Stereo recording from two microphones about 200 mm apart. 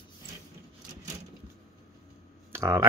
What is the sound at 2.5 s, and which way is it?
Speech, 15° right (ahead or behind).